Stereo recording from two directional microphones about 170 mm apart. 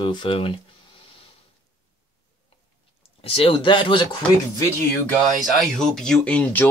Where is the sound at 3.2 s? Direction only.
35° left (ahead or behind).